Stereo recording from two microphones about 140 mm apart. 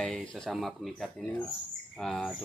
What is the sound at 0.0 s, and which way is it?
Speech, centre (ahead or behind).